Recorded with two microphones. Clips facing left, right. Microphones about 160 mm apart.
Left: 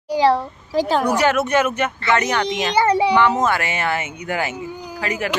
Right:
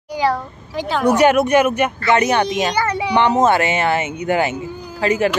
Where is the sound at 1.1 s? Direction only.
20° right (ahead or behind).